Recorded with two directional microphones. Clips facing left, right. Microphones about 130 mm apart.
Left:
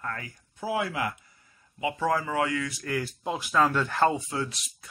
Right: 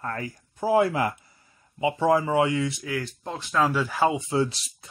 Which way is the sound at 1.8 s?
25° right (ahead or behind).